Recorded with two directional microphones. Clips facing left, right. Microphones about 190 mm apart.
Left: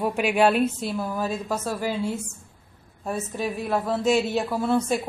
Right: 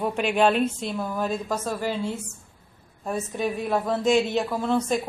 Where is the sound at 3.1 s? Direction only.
5° left (ahead or behind).